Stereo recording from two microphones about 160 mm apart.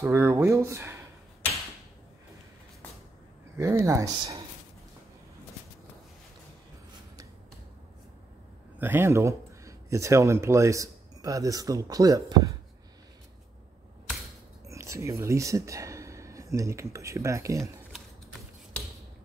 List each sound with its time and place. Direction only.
0.0 s speech: 15° right (ahead or behind)
3.5 s speech: 15° right (ahead or behind)
8.7 s speech: 15° right (ahead or behind)
14.7 s speech: 20° right (ahead or behind)